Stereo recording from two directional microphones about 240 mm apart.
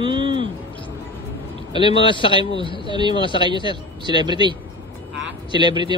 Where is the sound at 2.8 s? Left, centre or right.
Centre.